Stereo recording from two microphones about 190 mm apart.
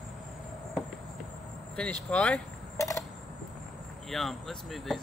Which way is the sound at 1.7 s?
5° left (ahead or behind).